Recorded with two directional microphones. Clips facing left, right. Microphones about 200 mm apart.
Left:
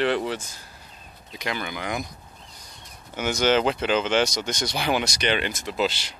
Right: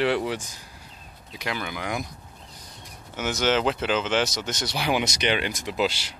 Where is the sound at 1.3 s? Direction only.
5° right (ahead or behind).